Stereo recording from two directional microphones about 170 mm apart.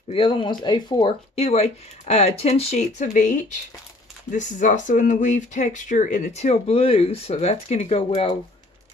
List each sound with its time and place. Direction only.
0.1 s speech: 30° left (ahead or behind)
1.3 s speech: 40° left (ahead or behind)